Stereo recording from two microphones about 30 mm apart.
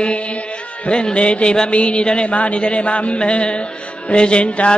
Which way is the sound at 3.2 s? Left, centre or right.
Left.